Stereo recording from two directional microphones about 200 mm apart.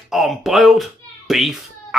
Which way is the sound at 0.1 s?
Centre (ahead or behind).